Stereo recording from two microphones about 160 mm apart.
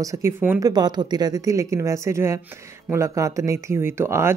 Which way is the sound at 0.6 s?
25° right (ahead or behind).